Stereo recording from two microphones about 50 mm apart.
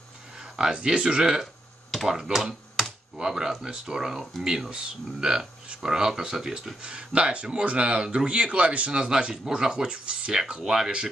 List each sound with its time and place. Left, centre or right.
0.4 s speech: centre
1.4 s a sound: centre
2.0 s speech: centre
6.8 s speech: right
10.5 s speech: centre